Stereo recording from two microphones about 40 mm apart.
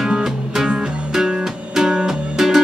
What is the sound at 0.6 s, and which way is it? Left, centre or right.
Music, right.